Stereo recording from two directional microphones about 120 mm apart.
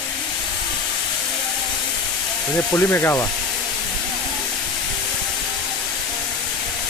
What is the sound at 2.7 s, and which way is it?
Speech, 20° left (ahead or behind).